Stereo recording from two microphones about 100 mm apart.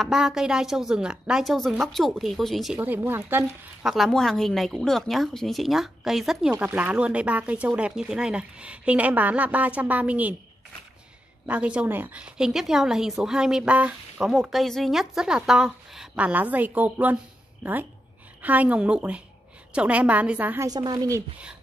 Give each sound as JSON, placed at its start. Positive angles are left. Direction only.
{"t": 0.0, "sound": "a woman's voice", "side_deg": -5}
{"t": 2.8, "sound": "speech", "side_deg": -20}
{"t": 3.8, "sound": "a woman's voice", "side_deg": 0}
{"t": 11.4, "sound": "a woman's voice", "side_deg": -15}
{"t": 18.4, "sound": "a woman's voice", "side_deg": -15}
{"t": 20.6, "sound": "a woman's voice", "side_deg": -40}